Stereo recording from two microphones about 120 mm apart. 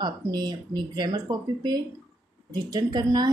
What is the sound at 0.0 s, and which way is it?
A woman's voice, 35° right (ahead or behind).